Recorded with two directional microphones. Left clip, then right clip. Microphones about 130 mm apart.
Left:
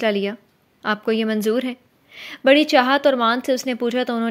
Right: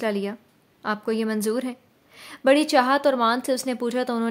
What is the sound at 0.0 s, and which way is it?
A woman's voice, 25° left (ahead or behind).